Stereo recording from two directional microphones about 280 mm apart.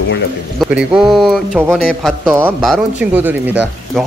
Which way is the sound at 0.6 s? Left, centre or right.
Centre.